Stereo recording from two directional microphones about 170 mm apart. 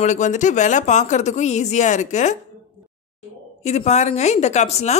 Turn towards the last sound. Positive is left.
turn(degrees=40)  # may be behind; listen again after turning